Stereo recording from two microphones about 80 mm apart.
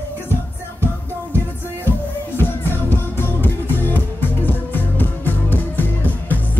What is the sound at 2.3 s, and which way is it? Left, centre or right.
Music, left.